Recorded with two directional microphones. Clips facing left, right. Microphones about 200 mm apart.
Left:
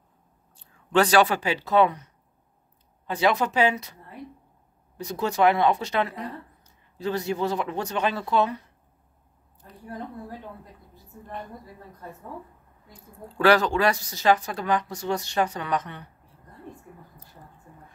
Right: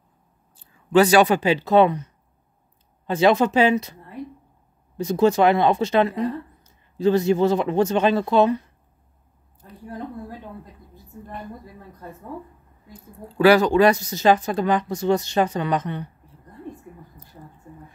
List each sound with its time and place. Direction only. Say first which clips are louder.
0.6 s speech: right 5 dB; 10° right (ahead or behind); by 2.0 s 25° right (ahead or behind)
3.1 s speech: right 6 dB; 25° right (ahead or behind)
4.9 s speech: right 9 dB; 25° right (ahead or behind)
12.9 s speech: right 6 dB; 10° right (ahead or behind)